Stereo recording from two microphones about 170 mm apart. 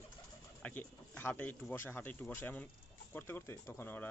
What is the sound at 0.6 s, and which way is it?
Speech, 10° left (ahead or behind).